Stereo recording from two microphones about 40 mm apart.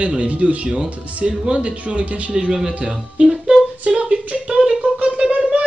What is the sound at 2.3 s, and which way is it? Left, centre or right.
Speech, right.